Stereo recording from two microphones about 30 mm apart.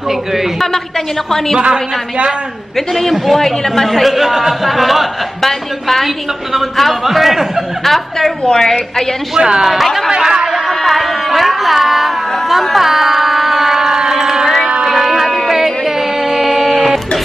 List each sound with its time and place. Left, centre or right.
2.9 s speech: centre
4.1 s a man's voice: centre
5.4 s speech: centre
6.5 s a man's voice: centre
7.8 s speech: centre
8.5 s a woman's voice: centre
9.4 s speech: right
10.7 s a sound: centre
14.1 s music: centre
14.9 s sheep: centre
15.5 s music: centre
16.3 s a sound: centre